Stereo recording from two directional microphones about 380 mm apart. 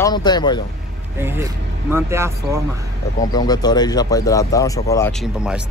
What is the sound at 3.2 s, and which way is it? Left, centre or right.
Speech, centre.